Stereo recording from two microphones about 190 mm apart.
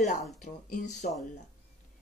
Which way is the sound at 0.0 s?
40° left (ahead or behind).